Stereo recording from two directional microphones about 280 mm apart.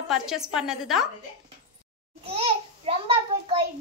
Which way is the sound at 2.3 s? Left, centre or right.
Right.